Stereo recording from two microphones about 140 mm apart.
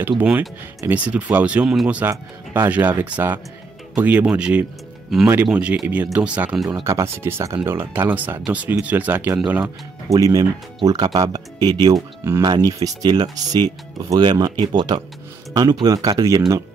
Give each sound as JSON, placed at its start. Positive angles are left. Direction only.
{"t": 0.1, "sound": "speech", "side_deg": -10}
{"t": 6.7, "sound": "speech", "side_deg": -20}
{"t": 10.1, "sound": "speech", "side_deg": -25}